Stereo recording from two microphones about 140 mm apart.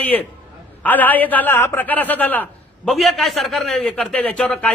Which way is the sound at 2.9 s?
Centre (ahead or behind).